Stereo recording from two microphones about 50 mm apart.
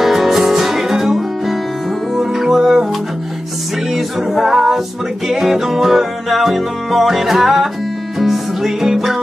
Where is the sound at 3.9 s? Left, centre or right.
Centre.